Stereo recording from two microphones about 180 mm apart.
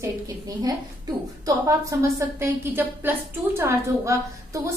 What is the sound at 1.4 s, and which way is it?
A woman's voice, 20° right (ahead or behind).